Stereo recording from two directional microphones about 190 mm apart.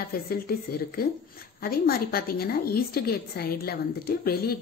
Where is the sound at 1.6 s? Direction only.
50° left (ahead or behind).